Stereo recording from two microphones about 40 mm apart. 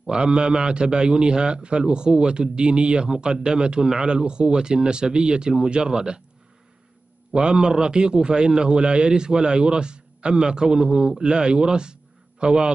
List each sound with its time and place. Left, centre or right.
0.0 s a man's voice: right
7.3 s a man's voice: right